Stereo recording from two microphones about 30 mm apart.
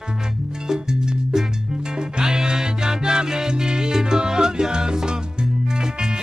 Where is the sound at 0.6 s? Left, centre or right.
Right.